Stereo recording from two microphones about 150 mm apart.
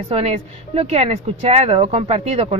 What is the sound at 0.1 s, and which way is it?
Speech, 40° right (ahead or behind).